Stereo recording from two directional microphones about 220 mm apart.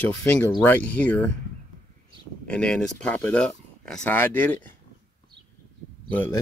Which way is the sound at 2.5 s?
5° left (ahead or behind).